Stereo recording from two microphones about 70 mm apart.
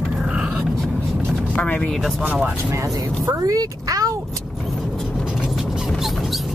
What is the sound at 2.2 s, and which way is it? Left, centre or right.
Speech, right.